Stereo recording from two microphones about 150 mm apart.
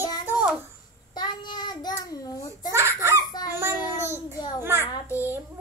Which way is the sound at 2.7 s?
15° right (ahead or behind).